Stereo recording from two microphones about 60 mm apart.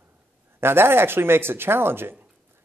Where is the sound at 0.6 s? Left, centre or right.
Right.